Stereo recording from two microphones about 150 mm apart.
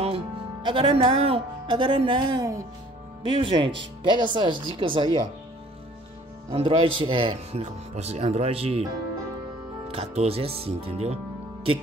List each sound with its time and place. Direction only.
0.0 s speech: 35° right (ahead or behind)
6.5 s speech: 35° right (ahead or behind)
7.9 s speech: 45° right (ahead or behind)
9.8 s speech: 40° right (ahead or behind)